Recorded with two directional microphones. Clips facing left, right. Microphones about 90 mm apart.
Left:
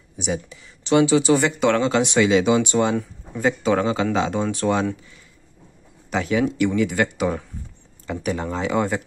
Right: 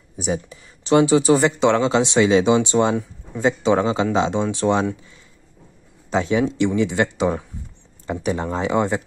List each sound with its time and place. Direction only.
0.2 s speech: 35° right (ahead or behind)
6.0 s speech: 30° right (ahead or behind)